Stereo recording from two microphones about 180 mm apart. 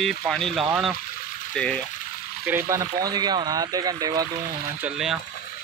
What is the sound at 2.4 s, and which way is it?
Speech, 10° right (ahead or behind).